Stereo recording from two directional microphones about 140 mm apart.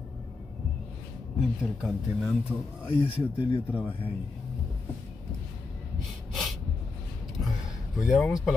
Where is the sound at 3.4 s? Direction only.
40° left (ahead or behind).